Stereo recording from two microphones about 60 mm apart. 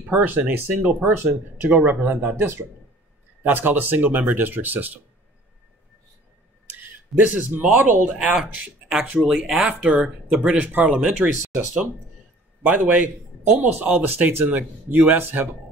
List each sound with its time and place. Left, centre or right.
0.1 s speech: right
3.4 s speech: right
6.8 s a sound: right
7.7 s speech: right
9.4 s speech: centre
10.3 s speech: centre
11.0 s speech: centre
12.6 s speech: right